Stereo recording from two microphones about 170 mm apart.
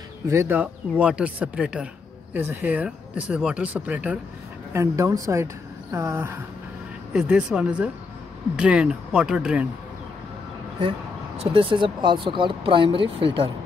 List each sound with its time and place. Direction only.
0.3 s speech: 15° right (ahead or behind)
11.5 s speech: 30° right (ahead or behind)